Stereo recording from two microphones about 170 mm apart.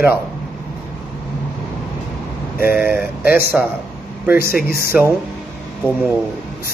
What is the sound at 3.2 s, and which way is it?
Speech, 60° left (ahead or behind).